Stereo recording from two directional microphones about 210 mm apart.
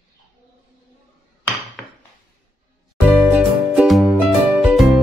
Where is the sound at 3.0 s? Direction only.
5° right (ahead or behind).